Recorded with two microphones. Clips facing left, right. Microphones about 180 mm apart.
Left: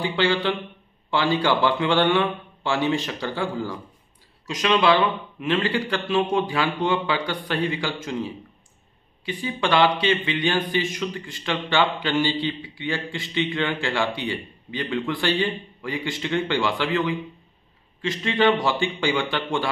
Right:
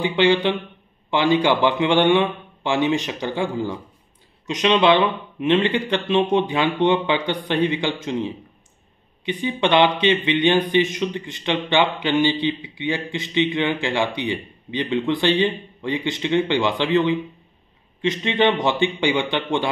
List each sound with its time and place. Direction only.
0.0 s a man's voice: 20° right (ahead or behind)